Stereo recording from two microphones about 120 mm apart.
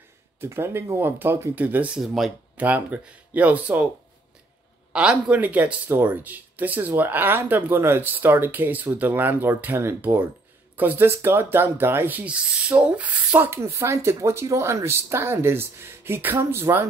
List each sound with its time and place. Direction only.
0.4 s speech: 20° right (ahead or behind)
2.0 s speech: centre (ahead or behind)
2.5 s speech: 15° right (ahead or behind)
4.9 s speech: 10° right (ahead or behind)